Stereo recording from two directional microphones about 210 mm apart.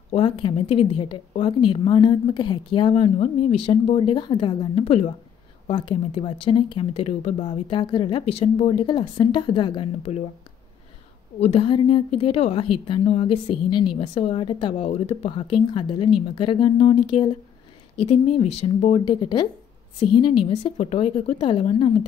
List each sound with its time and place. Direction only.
0.1 s a woman's voice: 25° left (ahead or behind)
11.3 s a woman's voice: 30° left (ahead or behind)